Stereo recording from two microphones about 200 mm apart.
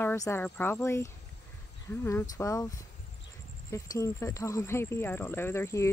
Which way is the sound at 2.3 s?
15° left (ahead or behind).